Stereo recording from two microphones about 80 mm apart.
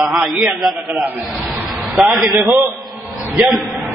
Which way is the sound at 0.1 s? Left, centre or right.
Centre.